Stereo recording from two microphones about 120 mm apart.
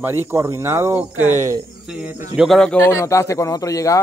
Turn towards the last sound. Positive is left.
turn(degrees=25)  # may be behind; listen again after turning